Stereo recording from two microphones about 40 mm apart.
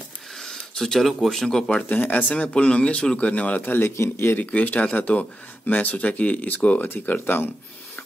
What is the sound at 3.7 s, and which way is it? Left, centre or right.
Speech, left.